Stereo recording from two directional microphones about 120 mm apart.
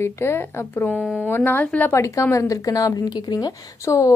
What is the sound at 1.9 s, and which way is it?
Speech, 25° left (ahead or behind).